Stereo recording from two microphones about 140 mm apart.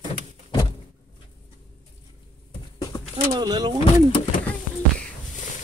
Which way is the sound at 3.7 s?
50° left (ahead or behind).